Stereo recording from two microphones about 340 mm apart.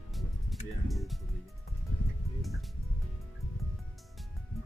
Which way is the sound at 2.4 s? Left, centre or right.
Centre.